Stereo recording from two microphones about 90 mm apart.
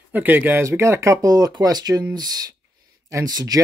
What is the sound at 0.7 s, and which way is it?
Speech, 30° right (ahead or behind).